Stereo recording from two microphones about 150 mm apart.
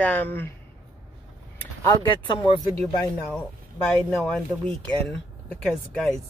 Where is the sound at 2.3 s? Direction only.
30° left (ahead or behind).